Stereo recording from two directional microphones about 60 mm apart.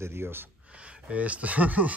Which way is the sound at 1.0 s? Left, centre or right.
Right.